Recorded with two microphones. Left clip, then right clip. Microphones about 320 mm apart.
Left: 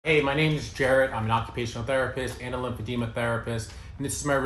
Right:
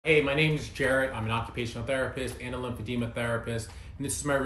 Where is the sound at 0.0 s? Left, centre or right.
Centre.